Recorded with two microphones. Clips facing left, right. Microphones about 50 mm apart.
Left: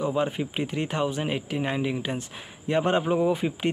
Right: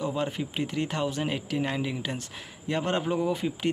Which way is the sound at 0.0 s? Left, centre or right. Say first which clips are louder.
Left 4 dB; centre.